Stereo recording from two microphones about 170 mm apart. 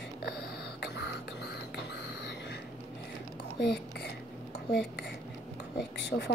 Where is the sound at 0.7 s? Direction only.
85° left.